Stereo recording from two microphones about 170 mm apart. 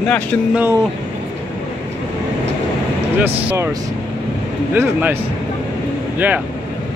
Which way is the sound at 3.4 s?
10° right (ahead or behind).